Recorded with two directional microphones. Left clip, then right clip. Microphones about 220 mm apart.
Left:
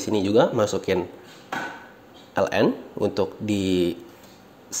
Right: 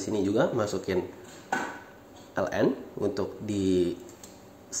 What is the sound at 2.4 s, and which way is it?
Speech, 45° left (ahead or behind).